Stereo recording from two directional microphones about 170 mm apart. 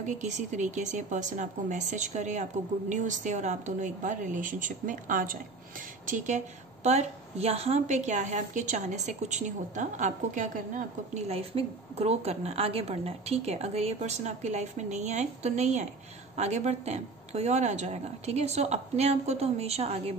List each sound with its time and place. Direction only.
0.0 s a woman's voice: 45° right (ahead or behind)